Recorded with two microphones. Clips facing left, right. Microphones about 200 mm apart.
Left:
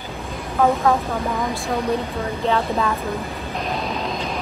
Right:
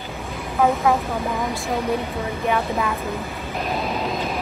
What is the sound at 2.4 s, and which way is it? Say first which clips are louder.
Speech: left 2 dB; 15° right (ahead or behind).